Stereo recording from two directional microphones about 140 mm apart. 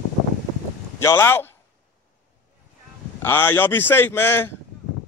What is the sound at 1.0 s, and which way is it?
Speech, 20° left (ahead or behind).